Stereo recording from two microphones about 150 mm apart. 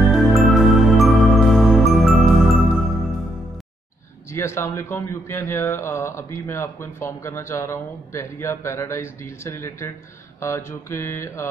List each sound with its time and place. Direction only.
0.0 s music: centre (ahead or behind)
4.3 s a man's voice: 15° left (ahead or behind)